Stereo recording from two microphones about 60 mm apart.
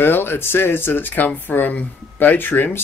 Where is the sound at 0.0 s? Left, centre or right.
Left.